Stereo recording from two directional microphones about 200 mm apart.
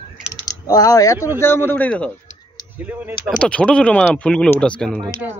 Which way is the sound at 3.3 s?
5° left (ahead or behind).